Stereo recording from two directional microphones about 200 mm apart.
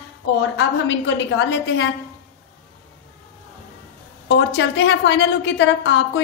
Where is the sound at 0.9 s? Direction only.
65° left (ahead or behind).